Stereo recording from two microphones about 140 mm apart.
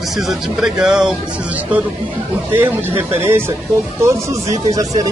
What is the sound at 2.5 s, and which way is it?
Speech, 15° right (ahead or behind).